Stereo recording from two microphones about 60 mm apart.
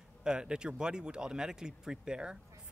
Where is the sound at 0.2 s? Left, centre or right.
Centre.